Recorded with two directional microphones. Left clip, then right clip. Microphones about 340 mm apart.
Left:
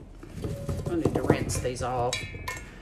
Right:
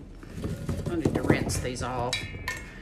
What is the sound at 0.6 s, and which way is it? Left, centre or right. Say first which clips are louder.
Music: left 1 dB; centre.